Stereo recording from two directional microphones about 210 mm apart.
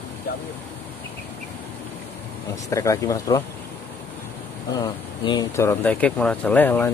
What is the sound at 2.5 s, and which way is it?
Speech, 15° left (ahead or behind).